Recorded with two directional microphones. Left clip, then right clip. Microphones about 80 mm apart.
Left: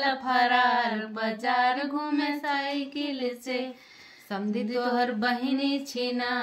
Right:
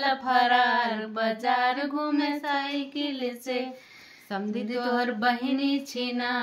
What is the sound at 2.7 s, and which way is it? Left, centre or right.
Speech, right.